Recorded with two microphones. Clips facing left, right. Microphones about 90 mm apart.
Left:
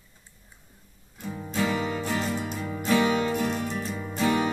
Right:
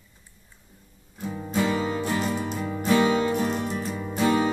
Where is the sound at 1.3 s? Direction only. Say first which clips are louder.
Right 2 dB; 20° right (ahead or behind).